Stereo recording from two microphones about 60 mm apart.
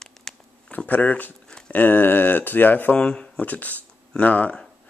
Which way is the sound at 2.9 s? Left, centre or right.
Centre.